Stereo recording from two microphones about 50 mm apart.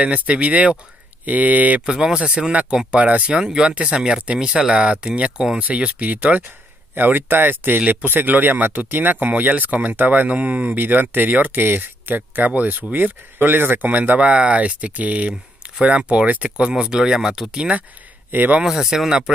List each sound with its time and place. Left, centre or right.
0.0 s speech: right
1.9 s speech: centre
7.0 s speech: right
10.8 s speech: right
13.8 s speech: right
14.2 s speech: right
18.3 s speech: right
18.6 s speech: centre